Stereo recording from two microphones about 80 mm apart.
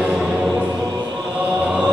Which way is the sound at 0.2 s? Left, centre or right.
Centre.